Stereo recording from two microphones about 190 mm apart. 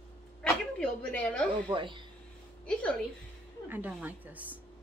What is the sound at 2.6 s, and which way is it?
Speech, 5° left (ahead or behind).